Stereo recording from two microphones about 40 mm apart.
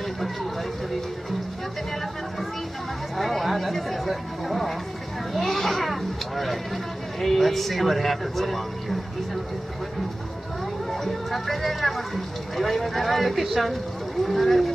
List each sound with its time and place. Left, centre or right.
3.2 s a sound: centre
5.3 s vehicle: centre
10.9 s speech: centre